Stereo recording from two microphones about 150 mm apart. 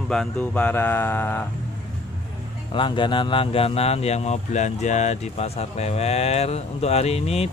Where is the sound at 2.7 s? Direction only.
30° left (ahead or behind).